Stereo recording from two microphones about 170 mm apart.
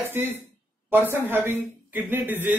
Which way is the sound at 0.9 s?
10° right (ahead or behind).